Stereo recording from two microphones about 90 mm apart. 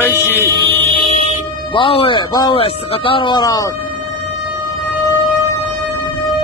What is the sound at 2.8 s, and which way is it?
Speech, 90° left.